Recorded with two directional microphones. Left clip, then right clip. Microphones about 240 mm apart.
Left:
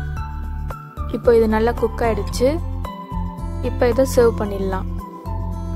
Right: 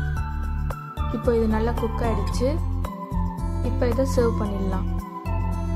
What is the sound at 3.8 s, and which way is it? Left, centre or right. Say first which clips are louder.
Speech: left 8 dB; left.